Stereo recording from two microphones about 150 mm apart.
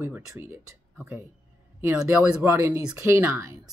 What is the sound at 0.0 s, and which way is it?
Speech, 15° right (ahead or behind).